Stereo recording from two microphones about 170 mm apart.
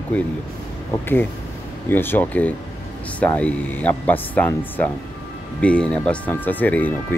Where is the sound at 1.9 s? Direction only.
10° left (ahead or behind).